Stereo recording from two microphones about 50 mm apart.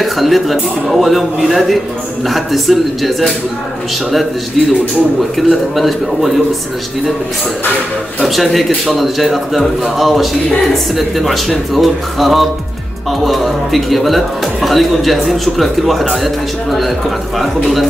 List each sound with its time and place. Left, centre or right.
0.0 s a man's voice: centre
5.5 s a man's voice: centre
8.2 s a man's voice: centre
17.4 s a man's voice: centre